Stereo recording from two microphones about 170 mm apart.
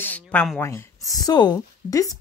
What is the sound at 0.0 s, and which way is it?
Speech, 10° left (ahead or behind).